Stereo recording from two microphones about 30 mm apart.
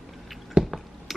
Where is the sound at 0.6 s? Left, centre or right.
Centre.